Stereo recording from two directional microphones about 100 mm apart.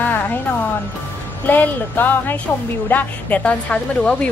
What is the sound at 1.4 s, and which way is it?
A woman's voice, 20° left (ahead or behind).